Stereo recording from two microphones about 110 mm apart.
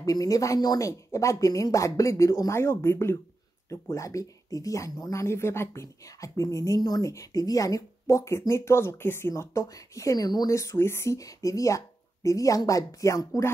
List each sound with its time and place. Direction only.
0.0 s speech: 30° left (ahead or behind)